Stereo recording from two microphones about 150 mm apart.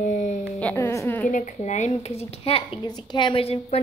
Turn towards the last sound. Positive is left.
turn(degrees=40)  # may be behind; listen again after turning